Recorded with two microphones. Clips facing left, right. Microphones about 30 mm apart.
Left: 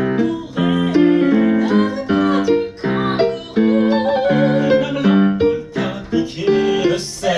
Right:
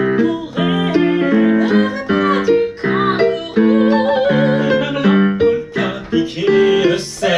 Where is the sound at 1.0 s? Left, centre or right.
Centre.